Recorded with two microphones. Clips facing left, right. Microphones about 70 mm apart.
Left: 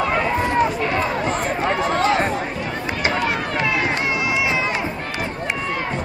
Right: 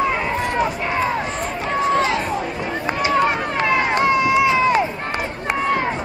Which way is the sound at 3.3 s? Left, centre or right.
Right.